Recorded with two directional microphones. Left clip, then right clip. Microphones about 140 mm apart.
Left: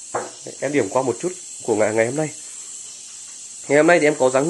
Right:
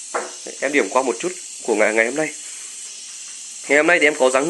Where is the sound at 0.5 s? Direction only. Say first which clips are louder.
Right 2 dB; 10° left (ahead or behind).